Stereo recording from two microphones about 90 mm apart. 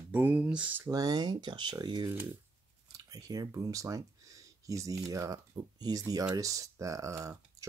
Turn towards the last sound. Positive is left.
turn(degrees=-40)  # may be behind; listen again after turning